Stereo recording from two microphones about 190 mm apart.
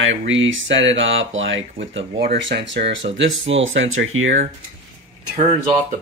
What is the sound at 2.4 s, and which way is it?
Speech, 70° right (ahead or behind).